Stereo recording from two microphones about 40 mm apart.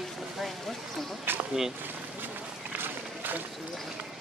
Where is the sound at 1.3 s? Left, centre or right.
Right.